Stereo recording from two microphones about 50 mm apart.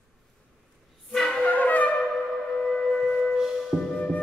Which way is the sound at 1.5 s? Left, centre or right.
Left.